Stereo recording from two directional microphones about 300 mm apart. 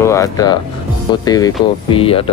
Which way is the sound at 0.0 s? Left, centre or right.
Centre.